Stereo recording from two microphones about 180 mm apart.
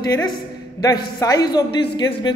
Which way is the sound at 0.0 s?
20° left (ahead or behind).